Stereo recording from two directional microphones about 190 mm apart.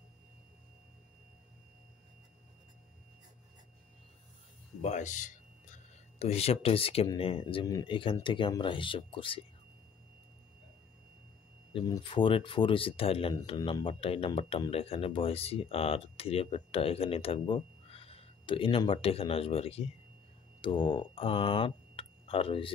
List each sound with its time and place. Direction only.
4.8 s speech: 40° left (ahead or behind)
11.7 s speech: 25° left (ahead or behind)